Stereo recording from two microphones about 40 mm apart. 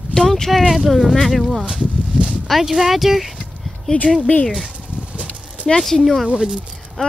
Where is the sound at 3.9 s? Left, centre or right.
Left.